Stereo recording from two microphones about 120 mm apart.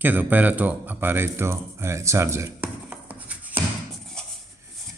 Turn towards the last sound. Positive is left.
turn(degrees=-15)  # may be behind; listen again after turning